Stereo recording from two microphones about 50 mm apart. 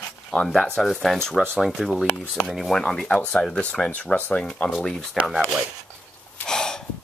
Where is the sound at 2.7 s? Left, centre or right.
Centre.